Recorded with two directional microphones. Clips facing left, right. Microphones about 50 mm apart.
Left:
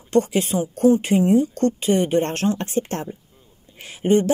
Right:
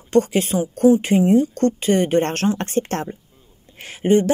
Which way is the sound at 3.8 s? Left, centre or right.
Right.